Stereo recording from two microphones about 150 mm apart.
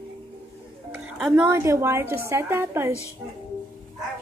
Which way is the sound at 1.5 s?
20° right (ahead or behind).